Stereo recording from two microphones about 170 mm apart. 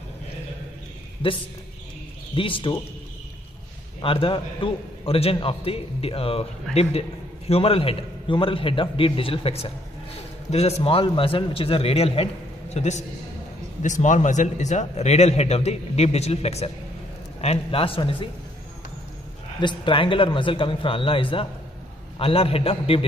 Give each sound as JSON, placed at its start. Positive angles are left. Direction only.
{"t": 1.2, "sound": "a man's voice", "side_deg": 30}
{"t": 4.0, "sound": "a man's voice", "side_deg": 30}
{"t": 19.6, "sound": "a man's voice", "side_deg": 30}